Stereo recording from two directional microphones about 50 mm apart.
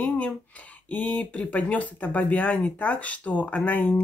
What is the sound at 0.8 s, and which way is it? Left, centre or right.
Speech, left.